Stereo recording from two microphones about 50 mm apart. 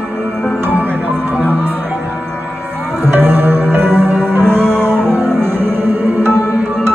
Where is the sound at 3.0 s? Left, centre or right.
Right.